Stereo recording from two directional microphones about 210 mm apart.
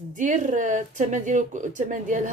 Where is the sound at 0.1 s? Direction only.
35° right (ahead or behind).